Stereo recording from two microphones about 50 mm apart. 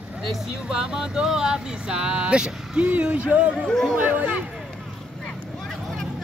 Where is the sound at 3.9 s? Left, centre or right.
Right.